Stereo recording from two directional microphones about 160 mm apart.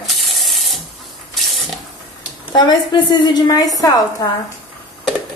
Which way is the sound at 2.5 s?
25° left (ahead or behind).